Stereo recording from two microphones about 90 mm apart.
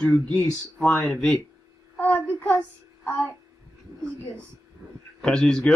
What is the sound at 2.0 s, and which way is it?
Child singing, 20° left (ahead or behind).